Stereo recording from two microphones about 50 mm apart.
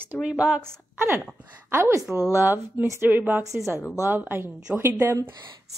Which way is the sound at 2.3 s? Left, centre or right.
Right.